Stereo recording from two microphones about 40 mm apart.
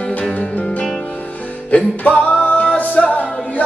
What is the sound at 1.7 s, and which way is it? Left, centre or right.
Music, left.